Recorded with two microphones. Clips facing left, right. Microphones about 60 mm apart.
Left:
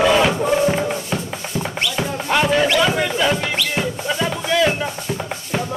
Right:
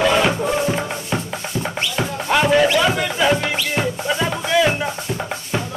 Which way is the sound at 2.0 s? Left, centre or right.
Centre.